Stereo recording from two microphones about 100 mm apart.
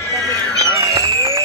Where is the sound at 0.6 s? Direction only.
35° right (ahead or behind).